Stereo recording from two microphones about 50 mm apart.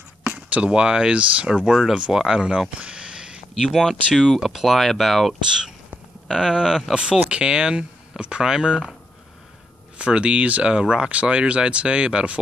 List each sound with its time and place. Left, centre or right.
0.3 s speech: right
1.6 s speech: centre
2.7 s a sound: right
3.7 s speech: centre
7.2 s speech: right
9.9 s speech: right